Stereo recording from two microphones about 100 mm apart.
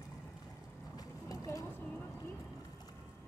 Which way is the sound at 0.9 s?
35° left (ahead or behind).